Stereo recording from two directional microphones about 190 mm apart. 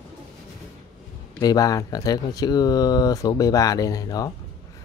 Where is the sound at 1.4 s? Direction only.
20° left (ahead or behind).